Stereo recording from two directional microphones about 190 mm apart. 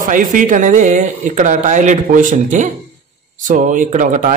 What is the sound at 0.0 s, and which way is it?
A man's voice, 45° right (ahead or behind).